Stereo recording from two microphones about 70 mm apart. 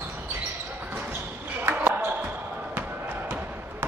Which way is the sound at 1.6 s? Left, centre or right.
Right.